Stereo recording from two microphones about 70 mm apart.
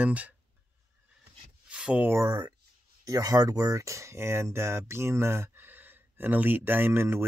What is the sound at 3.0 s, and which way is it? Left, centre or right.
Speech, right.